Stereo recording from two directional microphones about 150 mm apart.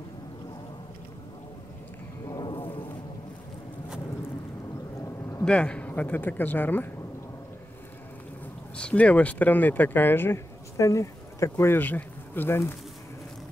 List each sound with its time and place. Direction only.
2.2 s a sound: 30° left (ahead or behind)
5.4 s a man's voice: 5° left (ahead or behind)
8.7 s speech: 10° left (ahead or behind)